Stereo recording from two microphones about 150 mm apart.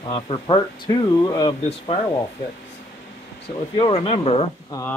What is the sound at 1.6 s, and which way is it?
Speech, 40° left (ahead or behind).